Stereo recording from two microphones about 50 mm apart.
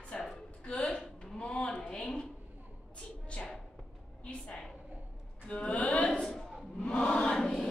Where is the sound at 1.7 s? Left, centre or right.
Centre.